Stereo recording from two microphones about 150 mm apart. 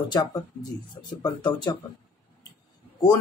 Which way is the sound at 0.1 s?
30° left (ahead or behind).